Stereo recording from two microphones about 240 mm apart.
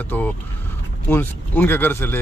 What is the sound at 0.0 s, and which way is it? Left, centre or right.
Speech, centre.